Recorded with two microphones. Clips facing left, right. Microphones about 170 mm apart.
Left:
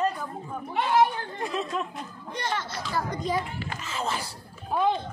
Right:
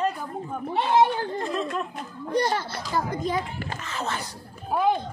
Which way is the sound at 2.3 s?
35° right (ahead or behind).